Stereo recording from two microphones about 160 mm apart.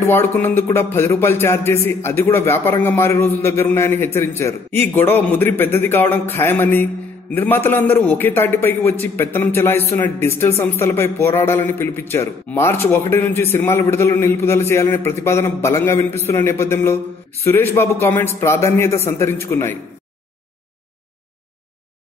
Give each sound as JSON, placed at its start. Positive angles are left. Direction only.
{"t": 0.0, "sound": "speech", "side_deg": 15}